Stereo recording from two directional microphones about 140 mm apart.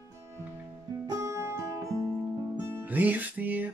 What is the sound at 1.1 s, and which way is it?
Music, 20° right (ahead or behind).